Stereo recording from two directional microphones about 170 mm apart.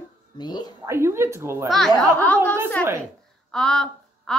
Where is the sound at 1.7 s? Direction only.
Centre (ahead or behind).